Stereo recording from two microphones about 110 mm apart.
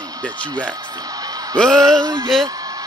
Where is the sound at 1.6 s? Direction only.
5° left (ahead or behind).